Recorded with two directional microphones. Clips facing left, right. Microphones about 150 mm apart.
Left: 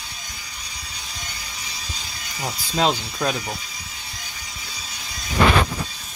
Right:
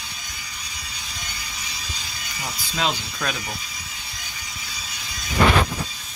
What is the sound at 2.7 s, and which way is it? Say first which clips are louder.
Speech: left 5 dB; 30° left (ahead or behind).